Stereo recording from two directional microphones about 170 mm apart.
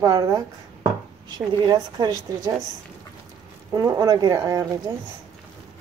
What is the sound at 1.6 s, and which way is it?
Speech, 25° right (ahead or behind).